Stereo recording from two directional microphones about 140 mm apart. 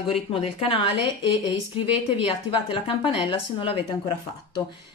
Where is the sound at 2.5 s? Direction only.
40° left (ahead or behind).